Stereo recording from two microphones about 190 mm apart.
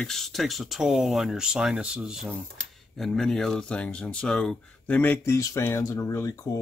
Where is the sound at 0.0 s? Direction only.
Centre (ahead or behind).